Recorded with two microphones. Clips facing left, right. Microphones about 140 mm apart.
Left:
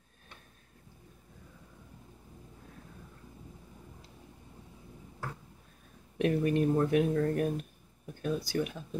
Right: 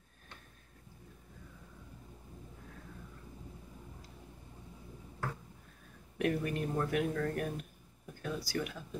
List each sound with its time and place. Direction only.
6.1 s speech: 20° left (ahead or behind)